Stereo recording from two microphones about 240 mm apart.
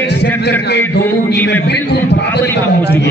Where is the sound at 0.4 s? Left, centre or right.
Left.